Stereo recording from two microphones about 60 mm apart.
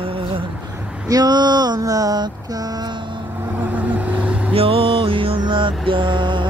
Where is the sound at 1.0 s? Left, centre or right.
Right.